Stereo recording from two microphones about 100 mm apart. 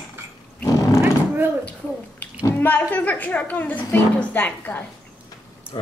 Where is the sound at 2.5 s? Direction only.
20° left (ahead or behind).